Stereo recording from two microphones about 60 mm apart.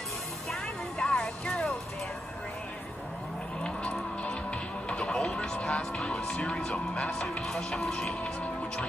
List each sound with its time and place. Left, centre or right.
0.5 s music: centre
4.2 s music: centre